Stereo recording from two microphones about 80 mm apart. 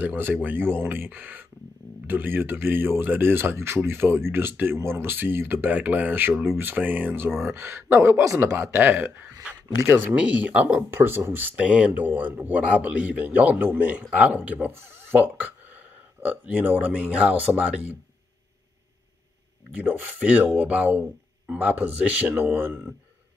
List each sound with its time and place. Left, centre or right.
0.0 s speech: right
8.5 s speech: right
11.5 s a man's voice: centre
19.7 s speech: centre